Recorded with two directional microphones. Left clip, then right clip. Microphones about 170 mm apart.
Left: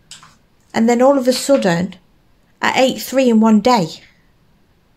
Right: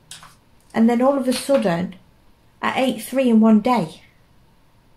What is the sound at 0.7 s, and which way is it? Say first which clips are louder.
Speech: left 5 dB; 55° left (ahead or behind).